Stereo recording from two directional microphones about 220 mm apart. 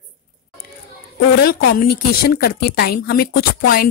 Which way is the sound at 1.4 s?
45° left (ahead or behind).